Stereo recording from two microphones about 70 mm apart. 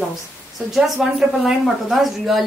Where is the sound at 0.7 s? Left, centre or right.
Centre.